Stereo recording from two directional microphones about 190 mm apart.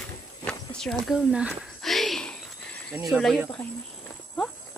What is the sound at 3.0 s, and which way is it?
Speech, centre (ahead or behind).